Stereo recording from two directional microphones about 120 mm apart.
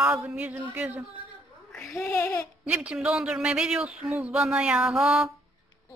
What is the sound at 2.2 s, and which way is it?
Speech, 30° left (ahead or behind).